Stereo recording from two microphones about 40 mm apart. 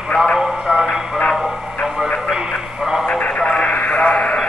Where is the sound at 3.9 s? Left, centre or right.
Left.